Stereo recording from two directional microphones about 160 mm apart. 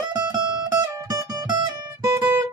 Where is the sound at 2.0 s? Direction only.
20° right (ahead or behind).